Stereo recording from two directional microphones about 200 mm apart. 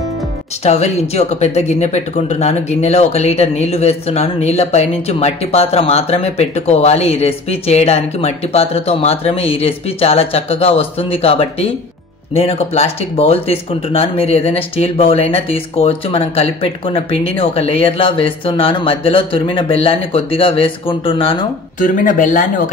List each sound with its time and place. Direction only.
0.7 s speech: 35° left (ahead or behind)
21.7 s speech: 40° left (ahead or behind)